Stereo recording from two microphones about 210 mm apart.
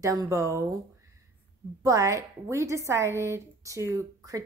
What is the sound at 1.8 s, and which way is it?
A woman's voice, 15° right (ahead or behind).